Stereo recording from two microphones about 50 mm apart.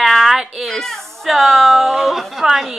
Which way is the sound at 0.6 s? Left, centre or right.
Centre.